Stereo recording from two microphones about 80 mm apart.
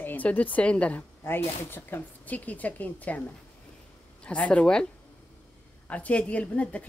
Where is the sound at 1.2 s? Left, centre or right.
Left.